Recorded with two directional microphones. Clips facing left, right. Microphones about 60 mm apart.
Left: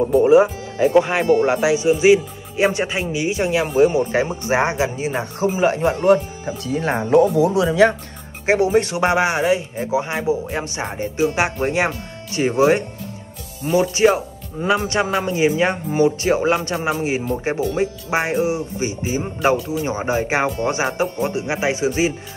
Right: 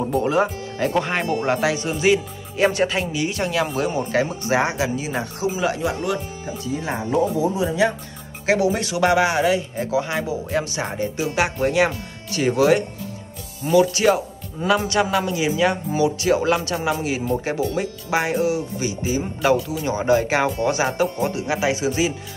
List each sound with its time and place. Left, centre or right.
0.1 s speech: centre; by 5.9 s left
6.6 s speech: left
8.5 s speech: left